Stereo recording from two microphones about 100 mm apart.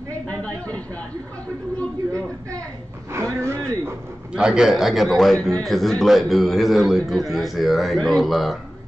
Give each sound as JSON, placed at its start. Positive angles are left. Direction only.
{"t": 0.1, "sound": "speech", "side_deg": 15}
{"t": 3.1, "sound": "speech", "side_deg": -25}
{"t": 4.3, "sound": "a man's voice", "side_deg": -10}